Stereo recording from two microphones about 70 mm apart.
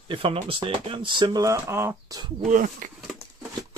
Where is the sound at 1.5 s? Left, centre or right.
Right.